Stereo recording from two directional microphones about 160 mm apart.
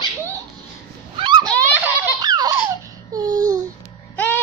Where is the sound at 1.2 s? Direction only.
30° right (ahead or behind).